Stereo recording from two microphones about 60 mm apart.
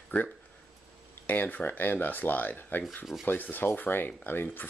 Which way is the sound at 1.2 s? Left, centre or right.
Left.